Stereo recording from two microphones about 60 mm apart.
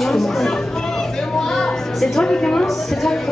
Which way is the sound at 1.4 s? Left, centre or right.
Centre.